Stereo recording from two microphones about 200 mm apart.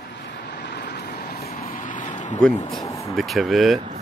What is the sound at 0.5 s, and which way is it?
Vehicle, 55° left (ahead or behind).